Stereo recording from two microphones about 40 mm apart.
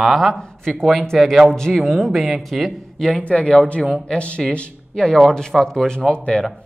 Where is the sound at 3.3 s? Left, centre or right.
Left.